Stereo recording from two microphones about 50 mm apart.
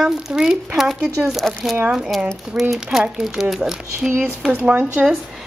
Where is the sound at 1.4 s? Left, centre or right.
Centre.